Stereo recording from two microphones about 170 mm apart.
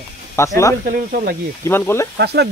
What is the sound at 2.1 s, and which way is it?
Speech, 80° right.